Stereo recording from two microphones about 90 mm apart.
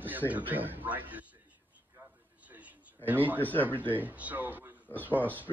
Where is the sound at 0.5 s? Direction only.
20° right (ahead or behind).